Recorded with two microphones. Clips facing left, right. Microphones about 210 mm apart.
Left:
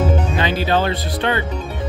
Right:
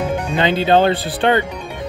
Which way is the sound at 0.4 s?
25° right (ahead or behind).